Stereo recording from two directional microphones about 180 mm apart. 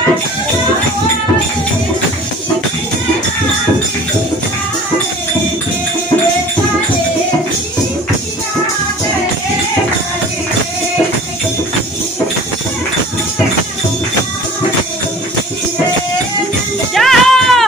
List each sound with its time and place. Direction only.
16.9 s music: centre (ahead or behind)